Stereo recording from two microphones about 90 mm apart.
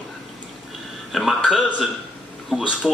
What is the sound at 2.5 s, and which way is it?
Speech, 10° right (ahead or behind).